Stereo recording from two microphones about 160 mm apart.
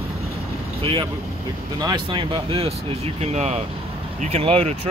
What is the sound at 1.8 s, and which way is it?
Speech, 30° right (ahead or behind).